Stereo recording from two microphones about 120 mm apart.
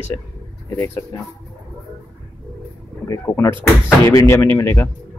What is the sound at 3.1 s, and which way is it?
Speech, 20° left (ahead or behind).